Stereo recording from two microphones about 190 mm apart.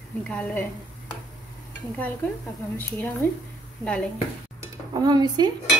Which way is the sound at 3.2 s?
10° left (ahead or behind).